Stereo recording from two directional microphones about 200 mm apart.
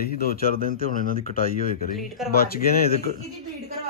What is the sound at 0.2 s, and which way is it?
Speech, 45° left (ahead or behind).